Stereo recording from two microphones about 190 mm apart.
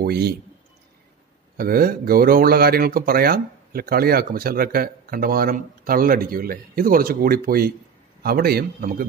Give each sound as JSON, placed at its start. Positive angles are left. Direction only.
{"t": 0.0, "sound": "speech", "side_deg": -55}
{"t": 1.6, "sound": "speech", "side_deg": -50}